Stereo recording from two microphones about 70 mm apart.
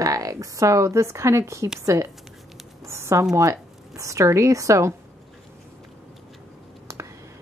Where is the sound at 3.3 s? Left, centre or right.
Right.